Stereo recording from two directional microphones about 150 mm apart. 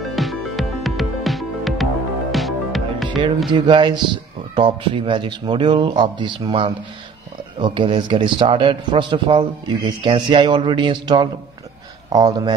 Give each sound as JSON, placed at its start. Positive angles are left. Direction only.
{"t": 0.0, "sound": "music", "side_deg": 0}
{"t": 3.5, "sound": "a man's voice", "side_deg": -30}